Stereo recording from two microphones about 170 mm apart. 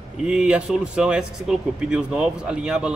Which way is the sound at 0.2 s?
5° right (ahead or behind).